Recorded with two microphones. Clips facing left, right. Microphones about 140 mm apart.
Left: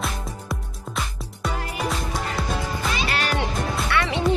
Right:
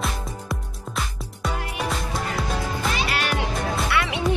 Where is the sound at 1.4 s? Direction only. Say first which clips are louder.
Left 1 dB; centre (ahead or behind).